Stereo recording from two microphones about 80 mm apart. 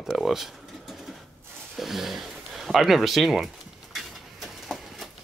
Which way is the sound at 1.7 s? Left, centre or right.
Centre.